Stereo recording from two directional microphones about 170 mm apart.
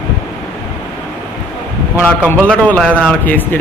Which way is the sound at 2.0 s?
10° left (ahead or behind).